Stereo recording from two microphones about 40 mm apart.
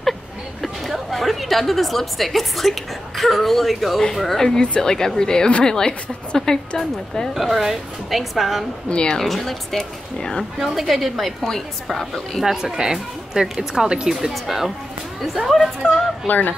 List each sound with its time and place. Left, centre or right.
0.6 s a woman's voice: centre
4.6 s speech: centre
7.3 s a woman's voice: centre
8.8 s a woman's voice: left
9.2 s speech: centre
10.6 s a woman's voice: centre
12.1 s a woman's voice: centre
12.7 s a woman's voice: centre
16.3 s speech: left